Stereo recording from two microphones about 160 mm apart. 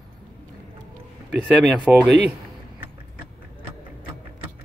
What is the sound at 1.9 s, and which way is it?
Speech, 10° right (ahead or behind).